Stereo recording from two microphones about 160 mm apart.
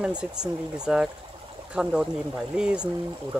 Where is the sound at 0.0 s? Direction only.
5° right (ahead or behind).